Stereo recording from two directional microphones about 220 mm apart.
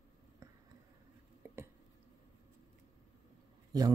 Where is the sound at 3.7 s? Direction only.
15° right (ahead or behind).